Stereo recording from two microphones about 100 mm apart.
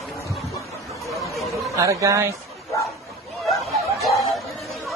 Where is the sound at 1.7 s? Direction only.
30° right (ahead or behind).